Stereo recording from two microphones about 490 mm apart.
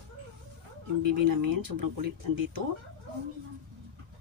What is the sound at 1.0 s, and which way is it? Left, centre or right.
Speech, right.